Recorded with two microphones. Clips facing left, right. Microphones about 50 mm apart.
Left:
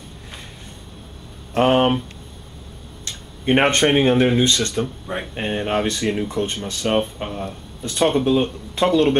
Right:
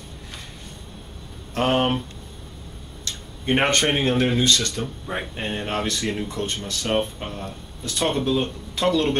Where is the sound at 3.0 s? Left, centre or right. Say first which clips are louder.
Left 4 dB; centre.